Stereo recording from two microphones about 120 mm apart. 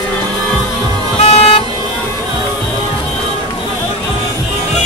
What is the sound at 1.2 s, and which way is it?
Vehicle, 60° left (ahead or behind).